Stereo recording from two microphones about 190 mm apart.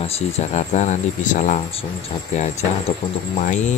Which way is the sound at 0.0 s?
35° left (ahead or behind).